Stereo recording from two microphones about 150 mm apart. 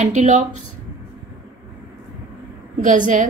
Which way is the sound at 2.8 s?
55° right (ahead or behind).